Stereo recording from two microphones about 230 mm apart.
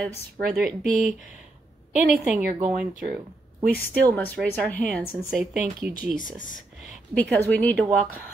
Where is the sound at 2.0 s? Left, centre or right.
Centre.